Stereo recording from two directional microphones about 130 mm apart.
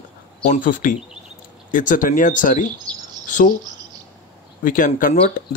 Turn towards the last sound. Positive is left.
turn(degrees=90)